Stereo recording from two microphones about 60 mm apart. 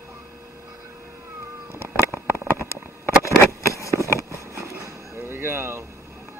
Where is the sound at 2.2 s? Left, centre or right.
Left.